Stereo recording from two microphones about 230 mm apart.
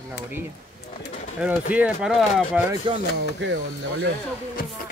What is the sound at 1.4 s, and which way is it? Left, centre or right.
Speech, centre.